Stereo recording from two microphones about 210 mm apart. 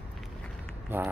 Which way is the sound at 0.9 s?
10° right (ahead or behind).